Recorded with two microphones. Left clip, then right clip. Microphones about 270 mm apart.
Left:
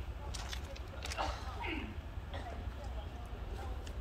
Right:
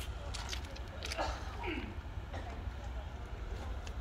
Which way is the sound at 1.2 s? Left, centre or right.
Right.